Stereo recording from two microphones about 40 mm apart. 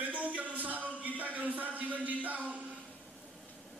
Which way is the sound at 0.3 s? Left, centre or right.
Right.